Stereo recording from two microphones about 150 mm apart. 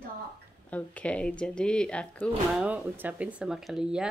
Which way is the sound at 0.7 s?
10° left (ahead or behind).